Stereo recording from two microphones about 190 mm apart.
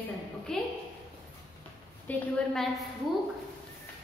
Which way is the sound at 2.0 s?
5° left (ahead or behind).